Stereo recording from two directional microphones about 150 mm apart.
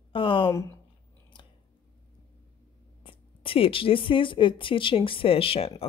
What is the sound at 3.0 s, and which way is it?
Speech, 35° left (ahead or behind).